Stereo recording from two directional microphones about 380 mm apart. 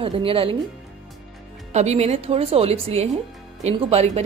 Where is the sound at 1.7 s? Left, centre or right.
Centre.